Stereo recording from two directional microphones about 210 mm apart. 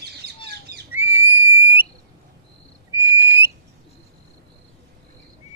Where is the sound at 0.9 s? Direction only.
10° right (ahead or behind).